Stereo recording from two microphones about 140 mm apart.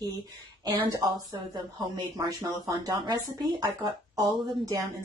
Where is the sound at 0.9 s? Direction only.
25° right (ahead or behind).